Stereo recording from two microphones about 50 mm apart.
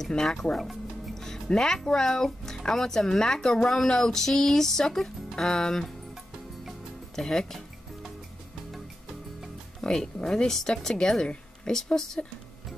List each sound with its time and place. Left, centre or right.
0.1 s speech: centre
7.2 s speech: centre
9.8 s speech: centre